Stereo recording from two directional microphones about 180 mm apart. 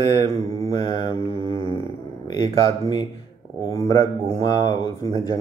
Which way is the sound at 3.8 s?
20° left (ahead or behind).